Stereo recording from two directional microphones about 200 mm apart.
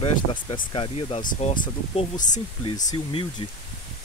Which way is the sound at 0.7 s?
25° left (ahead or behind).